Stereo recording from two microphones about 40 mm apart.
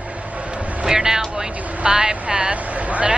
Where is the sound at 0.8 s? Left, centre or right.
Centre.